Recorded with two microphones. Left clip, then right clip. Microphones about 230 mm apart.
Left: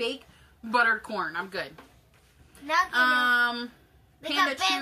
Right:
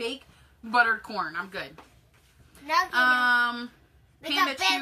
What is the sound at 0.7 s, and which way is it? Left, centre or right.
Speech, centre.